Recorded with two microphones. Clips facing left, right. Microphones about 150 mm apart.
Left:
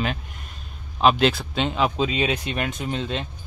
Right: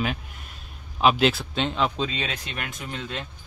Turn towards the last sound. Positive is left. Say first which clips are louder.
# left 6 dB
turn(degrees=25)  # may be behind; listen again after turning